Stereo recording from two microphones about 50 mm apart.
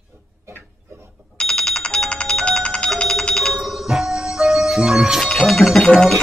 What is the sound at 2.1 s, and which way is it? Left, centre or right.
Telephone bell ringing, left.